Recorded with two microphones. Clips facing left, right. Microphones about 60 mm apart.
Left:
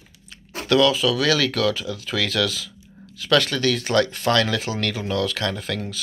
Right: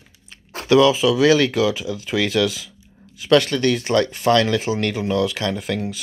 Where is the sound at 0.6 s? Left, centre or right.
Centre.